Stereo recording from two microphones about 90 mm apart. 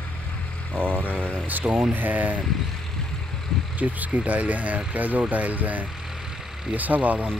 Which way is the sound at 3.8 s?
15° right (ahead or behind).